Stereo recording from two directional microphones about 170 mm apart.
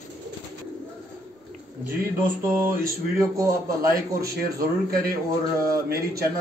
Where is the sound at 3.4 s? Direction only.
20° right (ahead or behind).